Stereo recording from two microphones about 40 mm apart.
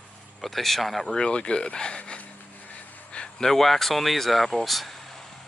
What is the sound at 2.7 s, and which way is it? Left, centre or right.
Music, left.